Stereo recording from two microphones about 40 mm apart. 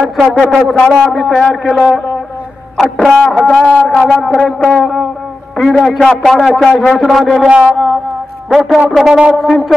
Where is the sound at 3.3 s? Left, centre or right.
Centre.